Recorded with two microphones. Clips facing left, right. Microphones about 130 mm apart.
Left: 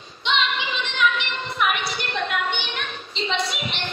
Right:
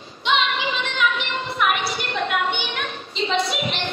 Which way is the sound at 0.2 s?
Centre (ahead or behind).